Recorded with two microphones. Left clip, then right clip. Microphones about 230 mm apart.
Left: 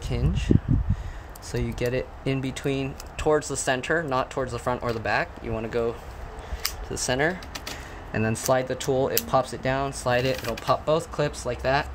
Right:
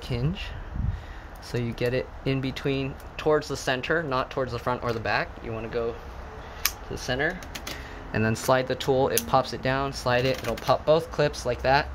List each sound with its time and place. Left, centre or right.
0.1 s speech: centre
5.5 s speech: centre
8.1 s speech: centre